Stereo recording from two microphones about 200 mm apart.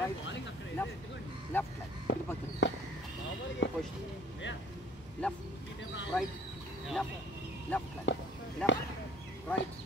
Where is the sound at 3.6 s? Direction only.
65° left (ahead or behind).